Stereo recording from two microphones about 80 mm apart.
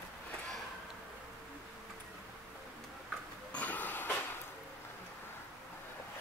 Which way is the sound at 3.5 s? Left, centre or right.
Centre.